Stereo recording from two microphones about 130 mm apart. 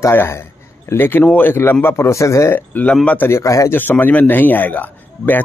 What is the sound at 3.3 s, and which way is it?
Speech, 25° left (ahead or behind).